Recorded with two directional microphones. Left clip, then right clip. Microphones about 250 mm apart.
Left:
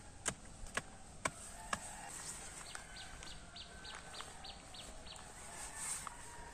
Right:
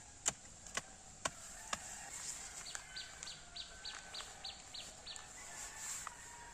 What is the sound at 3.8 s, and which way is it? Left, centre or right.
Chicken, right.